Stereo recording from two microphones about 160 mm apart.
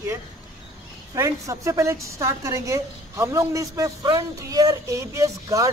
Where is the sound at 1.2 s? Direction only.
20° right (ahead or behind).